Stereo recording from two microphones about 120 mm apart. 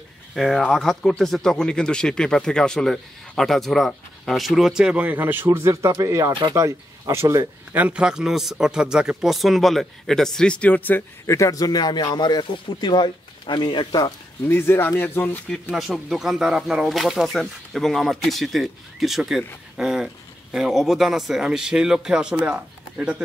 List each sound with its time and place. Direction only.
0.4 s speech: centre (ahead or behind); by 7.8 s 20° right (ahead or behind)
7.8 s a man's voice: 10° right (ahead or behind); by 14.1 s 40° left (ahead or behind)
14.5 s speech: 20° left (ahead or behind)
15.7 s speech: 5° right (ahead or behind)